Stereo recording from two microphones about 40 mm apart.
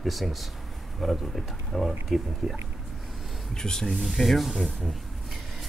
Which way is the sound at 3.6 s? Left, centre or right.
Centre.